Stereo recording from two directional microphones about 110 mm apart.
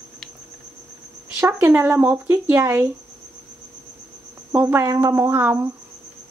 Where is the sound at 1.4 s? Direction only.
20° right (ahead or behind).